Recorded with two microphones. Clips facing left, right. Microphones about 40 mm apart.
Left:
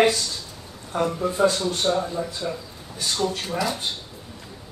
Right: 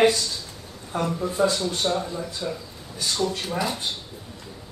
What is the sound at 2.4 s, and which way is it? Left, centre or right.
Speech, centre.